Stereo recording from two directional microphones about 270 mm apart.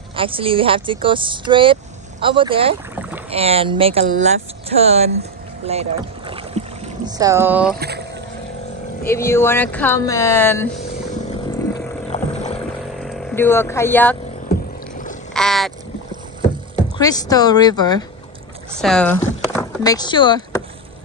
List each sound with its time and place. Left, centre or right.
0.1 s speech: centre
5.7 s boat: right
7.1 s speech: centre
7.7 s speech: right
9.0 s speech: centre
11.7 s vehicle: left
12.5 s vehicle: centre
14.5 s a sound: left
15.3 s boat: centre
17.0 s speech: centre
18.8 s speech: centre
19.5 s a sound: centre